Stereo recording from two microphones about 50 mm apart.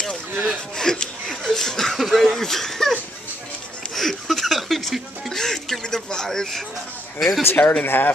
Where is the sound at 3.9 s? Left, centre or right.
Centre.